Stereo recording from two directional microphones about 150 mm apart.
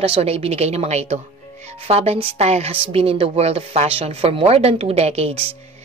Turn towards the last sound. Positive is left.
turn(degrees=-45)  # may be behind; listen again after turning